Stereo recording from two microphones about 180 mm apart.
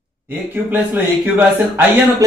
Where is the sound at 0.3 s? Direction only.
10° right (ahead or behind).